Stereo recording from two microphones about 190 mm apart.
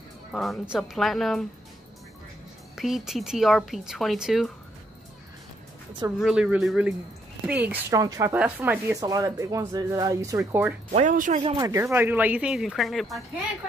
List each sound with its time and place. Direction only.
0.3 s speech: centre (ahead or behind)
2.8 s speech: centre (ahead or behind)
6.1 s speech: 5° right (ahead or behind)
10.9 s speech: 40° right (ahead or behind)
11.4 s speech: 20° right (ahead or behind); by 13.2 s centre (ahead or behind)